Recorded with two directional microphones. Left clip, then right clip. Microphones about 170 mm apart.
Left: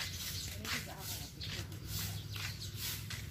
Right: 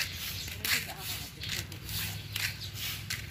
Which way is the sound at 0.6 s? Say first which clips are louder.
Right 10 dB; 70° right (ahead or behind).